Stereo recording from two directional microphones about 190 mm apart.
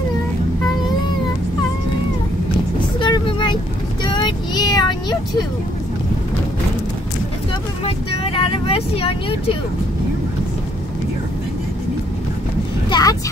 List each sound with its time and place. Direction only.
3.0 s vehicle: 25° left (ahead or behind)
4.0 s child singing: 25° left (ahead or behind)
7.8 s vehicle: 30° left (ahead or behind)
12.9 s speech: 25° left (ahead or behind)